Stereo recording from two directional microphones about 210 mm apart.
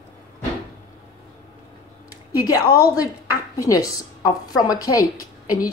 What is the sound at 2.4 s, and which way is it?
Speech, 15° left (ahead or behind).